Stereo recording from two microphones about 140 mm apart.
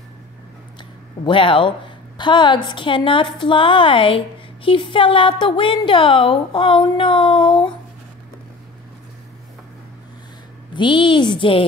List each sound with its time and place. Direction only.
1.2 s a woman's voice: 40° left (ahead or behind)
10.7 s a woman's voice: 35° left (ahead or behind)